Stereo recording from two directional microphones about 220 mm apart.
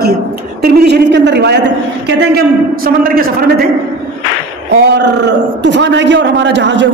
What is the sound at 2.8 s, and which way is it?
Speech, 40° right (ahead or behind).